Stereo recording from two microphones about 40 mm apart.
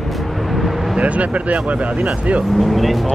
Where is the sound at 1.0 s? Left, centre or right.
Right.